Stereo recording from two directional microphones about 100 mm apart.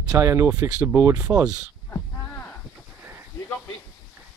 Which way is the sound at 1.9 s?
20° left (ahead or behind).